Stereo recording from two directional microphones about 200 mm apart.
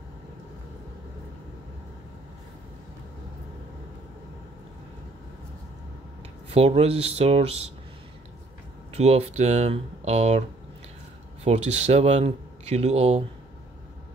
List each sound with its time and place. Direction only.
6.5 s speech: 30° right (ahead or behind)
8.9 s speech: 30° right (ahead or behind)
11.4 s speech: 30° right (ahead or behind)